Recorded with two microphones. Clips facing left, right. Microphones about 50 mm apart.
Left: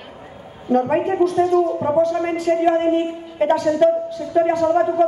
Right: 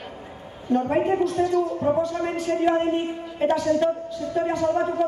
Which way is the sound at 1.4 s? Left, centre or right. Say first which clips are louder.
Left 4 dB; left.